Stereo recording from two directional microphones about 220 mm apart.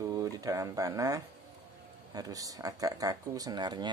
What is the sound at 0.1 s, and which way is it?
Speech, 15° right (ahead or behind).